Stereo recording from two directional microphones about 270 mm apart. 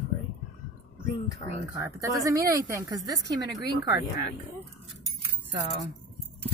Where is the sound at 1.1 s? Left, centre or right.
Centre.